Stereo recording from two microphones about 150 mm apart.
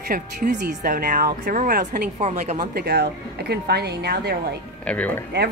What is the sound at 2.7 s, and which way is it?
Speech, 90° right.